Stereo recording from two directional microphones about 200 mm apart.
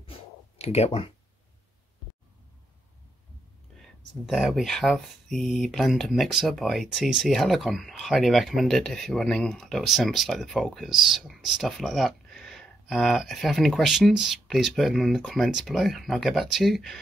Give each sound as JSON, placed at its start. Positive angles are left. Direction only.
{"t": 0.6, "sound": "speech", "side_deg": 30}
{"t": 4.3, "sound": "speech", "side_deg": 0}